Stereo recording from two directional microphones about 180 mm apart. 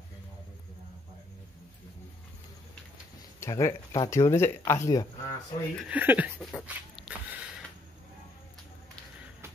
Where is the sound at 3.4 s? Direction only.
15° left (ahead or behind).